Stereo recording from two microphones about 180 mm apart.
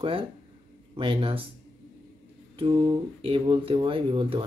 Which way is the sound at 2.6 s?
30° right (ahead or behind).